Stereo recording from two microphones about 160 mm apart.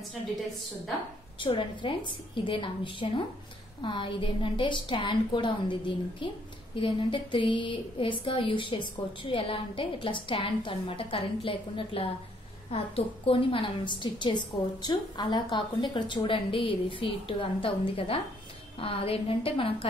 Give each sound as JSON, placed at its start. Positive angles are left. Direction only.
{"t": 1.4, "sound": "a woman's voice", "side_deg": 30}